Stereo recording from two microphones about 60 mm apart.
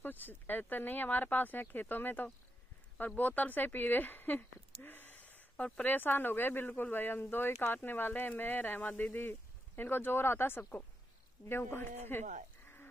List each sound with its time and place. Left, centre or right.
0.0 s speech: left